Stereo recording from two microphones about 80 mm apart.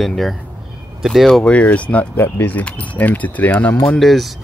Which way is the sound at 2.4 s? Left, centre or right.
Centre.